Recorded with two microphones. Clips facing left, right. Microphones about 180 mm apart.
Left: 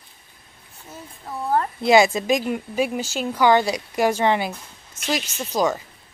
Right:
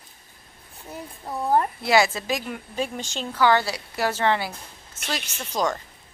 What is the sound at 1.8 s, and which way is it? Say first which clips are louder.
A woman's voice: left 5 dB; 20° left (ahead or behind).